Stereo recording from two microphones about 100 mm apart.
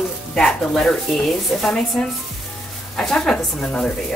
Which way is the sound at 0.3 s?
5° left (ahead or behind).